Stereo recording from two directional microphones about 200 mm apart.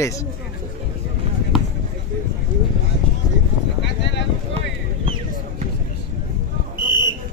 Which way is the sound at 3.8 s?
60° left (ahead or behind).